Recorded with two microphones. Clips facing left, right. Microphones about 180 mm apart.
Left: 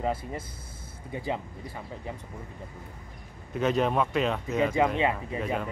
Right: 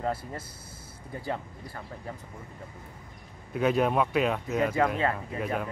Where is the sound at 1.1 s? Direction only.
Centre (ahead or behind).